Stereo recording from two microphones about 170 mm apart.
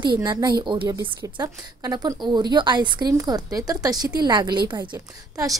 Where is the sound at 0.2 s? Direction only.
25° right (ahead or behind).